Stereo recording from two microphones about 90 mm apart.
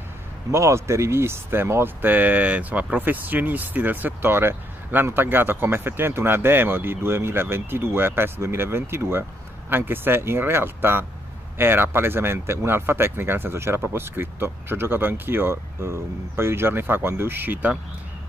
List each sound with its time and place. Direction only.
0.5 s speech: 30° right (ahead or behind)